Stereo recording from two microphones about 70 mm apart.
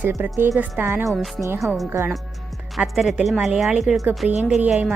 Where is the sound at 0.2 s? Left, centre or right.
Right.